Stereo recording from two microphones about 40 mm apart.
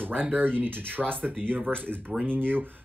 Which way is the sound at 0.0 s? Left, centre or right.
Right.